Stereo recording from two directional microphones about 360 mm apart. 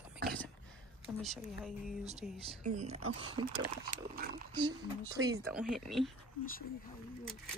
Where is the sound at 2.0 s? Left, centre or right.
Centre.